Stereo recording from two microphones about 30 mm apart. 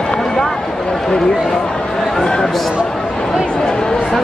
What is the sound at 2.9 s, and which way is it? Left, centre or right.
Chatter, centre.